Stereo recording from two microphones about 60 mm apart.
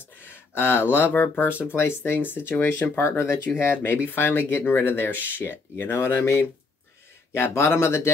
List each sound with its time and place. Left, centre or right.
0.0 s a sound: left
1.1 s speech: left
1.8 s speech: left